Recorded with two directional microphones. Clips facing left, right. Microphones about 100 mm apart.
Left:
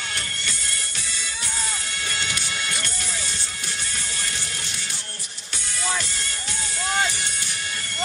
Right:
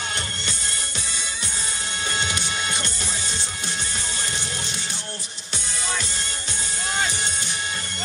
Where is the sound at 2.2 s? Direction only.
25° right (ahead or behind).